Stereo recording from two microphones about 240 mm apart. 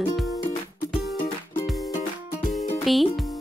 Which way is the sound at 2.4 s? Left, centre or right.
Centre.